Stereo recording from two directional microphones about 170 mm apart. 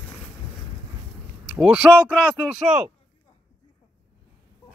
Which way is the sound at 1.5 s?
5° right (ahead or behind).